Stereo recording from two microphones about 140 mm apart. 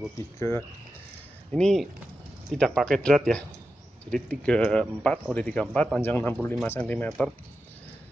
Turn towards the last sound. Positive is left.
turn(degrees=10)  # may be behind; listen again after turning